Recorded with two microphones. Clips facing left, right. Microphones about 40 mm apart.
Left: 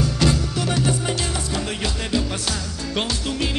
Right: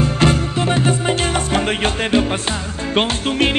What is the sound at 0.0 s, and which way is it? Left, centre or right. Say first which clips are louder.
Music: right 5 dB; right.